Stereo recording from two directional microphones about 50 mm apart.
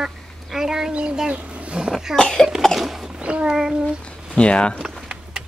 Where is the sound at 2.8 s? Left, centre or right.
Centre.